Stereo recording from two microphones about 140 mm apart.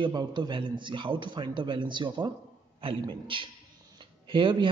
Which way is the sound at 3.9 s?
35° right (ahead or behind).